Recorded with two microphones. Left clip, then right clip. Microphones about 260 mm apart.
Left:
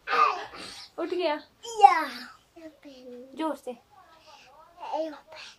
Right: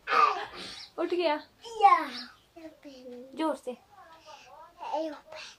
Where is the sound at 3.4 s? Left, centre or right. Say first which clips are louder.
Even; centre.